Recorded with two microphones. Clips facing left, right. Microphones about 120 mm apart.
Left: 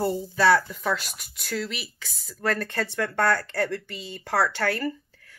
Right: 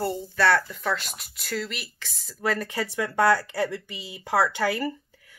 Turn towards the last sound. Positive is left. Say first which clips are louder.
# even
turn(degrees=-15)  # may be behind; listen again after turning